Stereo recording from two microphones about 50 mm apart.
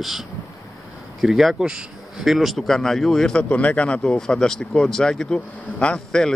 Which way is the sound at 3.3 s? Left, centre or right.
Left.